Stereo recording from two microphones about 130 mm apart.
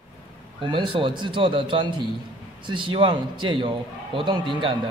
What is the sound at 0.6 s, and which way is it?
A man's voice, 40° right (ahead or behind).